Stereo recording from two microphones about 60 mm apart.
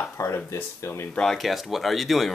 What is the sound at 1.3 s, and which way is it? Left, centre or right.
Speech, centre.